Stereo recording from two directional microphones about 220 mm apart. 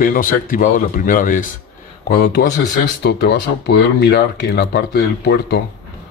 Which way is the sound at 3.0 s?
45° left (ahead or behind).